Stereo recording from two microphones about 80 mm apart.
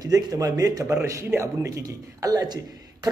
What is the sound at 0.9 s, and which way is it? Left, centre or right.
A man's voice, right.